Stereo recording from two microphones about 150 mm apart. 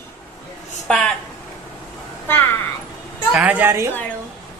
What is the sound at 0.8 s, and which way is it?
Speech, 5° left (ahead or behind).